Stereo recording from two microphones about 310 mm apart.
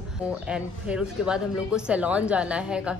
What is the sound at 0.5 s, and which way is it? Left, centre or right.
Speech, centre.